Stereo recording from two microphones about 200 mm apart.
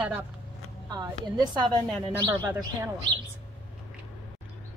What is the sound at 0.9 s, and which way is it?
A woman's voice, 20° right (ahead or behind).